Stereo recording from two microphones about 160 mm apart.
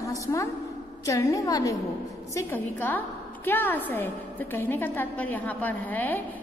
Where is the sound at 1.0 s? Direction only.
20° left (ahead or behind).